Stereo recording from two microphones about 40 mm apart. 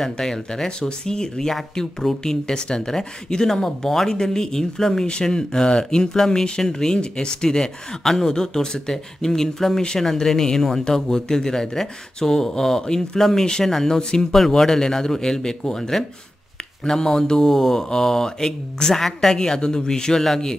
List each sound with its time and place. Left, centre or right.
0.0 s speech: centre